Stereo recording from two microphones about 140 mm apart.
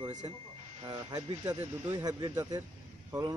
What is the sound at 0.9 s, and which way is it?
Speech, 25° right (ahead or behind).